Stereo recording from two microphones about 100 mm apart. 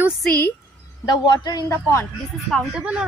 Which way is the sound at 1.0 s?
45° left (ahead or behind).